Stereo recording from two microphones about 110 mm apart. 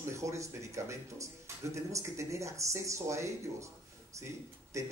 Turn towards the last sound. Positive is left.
turn(degrees=-25)  # may be behind; listen again after turning